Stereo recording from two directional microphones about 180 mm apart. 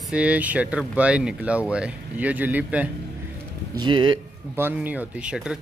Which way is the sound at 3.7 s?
25° right (ahead or behind).